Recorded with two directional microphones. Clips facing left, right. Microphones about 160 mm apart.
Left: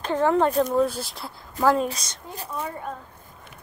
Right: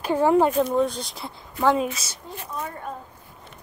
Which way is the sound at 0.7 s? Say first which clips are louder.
Even; 5° left (ahead or behind).